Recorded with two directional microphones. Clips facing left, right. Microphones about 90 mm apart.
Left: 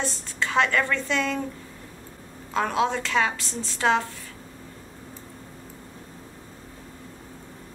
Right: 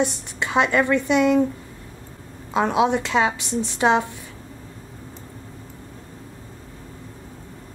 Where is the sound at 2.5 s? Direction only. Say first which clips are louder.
Right 5 dB; 20° right (ahead or behind).